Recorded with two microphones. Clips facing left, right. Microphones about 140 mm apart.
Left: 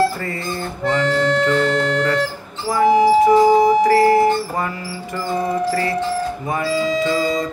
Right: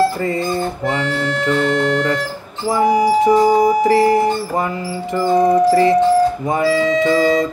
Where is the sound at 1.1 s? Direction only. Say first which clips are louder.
Left 2 dB; 35° left (ahead or behind).